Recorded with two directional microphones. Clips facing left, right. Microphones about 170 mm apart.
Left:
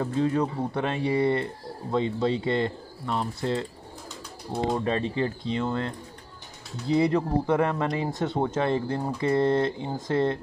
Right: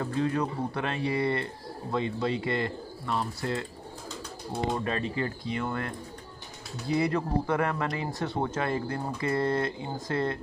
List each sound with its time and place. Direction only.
0.0 s speech: 25° left (ahead or behind)
4.8 s speech: 25° left (ahead or behind)